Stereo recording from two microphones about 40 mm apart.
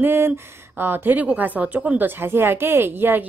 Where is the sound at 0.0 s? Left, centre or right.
Right.